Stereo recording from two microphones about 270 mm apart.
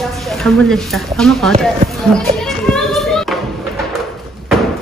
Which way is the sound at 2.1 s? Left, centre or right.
Centre.